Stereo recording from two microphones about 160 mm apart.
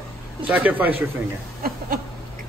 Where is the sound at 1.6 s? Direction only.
65° right (ahead or behind).